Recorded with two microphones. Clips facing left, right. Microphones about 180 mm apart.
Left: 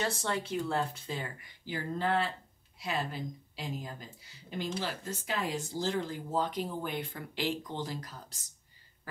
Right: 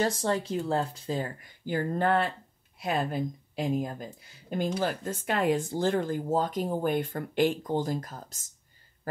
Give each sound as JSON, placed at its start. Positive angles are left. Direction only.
{"t": 0.0, "sound": "speech", "side_deg": -35}
{"t": 1.7, "sound": "speech", "side_deg": -55}